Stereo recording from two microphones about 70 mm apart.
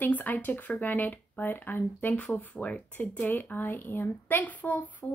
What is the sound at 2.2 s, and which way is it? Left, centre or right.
Speech, centre.